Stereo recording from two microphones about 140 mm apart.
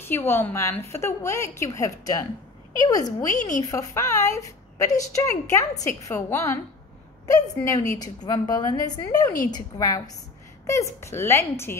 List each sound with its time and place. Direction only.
0.0 s a woman's voice: 15° left (ahead or behind)